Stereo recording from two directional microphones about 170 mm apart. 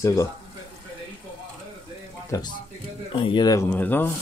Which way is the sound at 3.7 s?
10° left (ahead or behind).